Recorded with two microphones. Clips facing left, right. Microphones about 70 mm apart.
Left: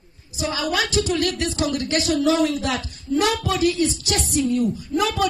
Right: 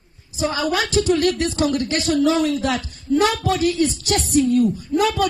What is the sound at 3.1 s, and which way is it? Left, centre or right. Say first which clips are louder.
Speech: right 3 dB; right.